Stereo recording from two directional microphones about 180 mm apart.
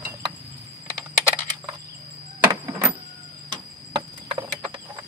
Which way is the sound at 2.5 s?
15° right (ahead or behind).